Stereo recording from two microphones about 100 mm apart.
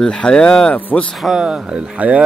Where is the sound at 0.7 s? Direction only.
15° left (ahead or behind).